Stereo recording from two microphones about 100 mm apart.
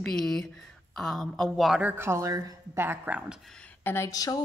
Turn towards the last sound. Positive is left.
turn(degrees=35)  # may be behind; listen again after turning